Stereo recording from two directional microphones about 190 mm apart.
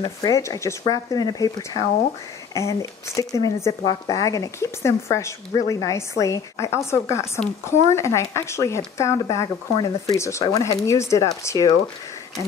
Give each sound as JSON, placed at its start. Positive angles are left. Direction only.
{"t": 0.2, "sound": "speech", "side_deg": 20}